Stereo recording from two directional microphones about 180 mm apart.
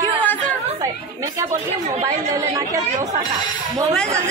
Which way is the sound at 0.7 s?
15° right (ahead or behind).